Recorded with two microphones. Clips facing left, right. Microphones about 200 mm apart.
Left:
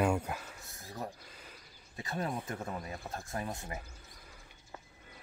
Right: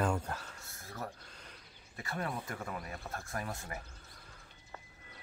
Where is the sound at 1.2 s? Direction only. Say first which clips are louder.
Left 1 dB; 5° left (ahead or behind).